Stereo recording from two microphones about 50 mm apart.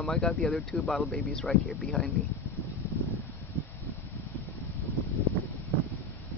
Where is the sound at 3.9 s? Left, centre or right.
Left.